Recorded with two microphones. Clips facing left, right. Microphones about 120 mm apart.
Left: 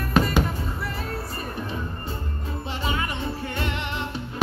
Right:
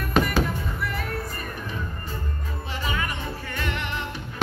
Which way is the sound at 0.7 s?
30° left (ahead or behind).